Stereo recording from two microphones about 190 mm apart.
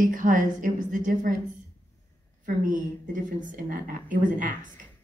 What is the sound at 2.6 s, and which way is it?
A woman's voice, 45° right (ahead or behind).